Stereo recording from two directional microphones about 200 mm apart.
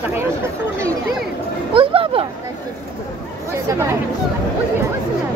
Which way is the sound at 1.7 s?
25° right (ahead or behind).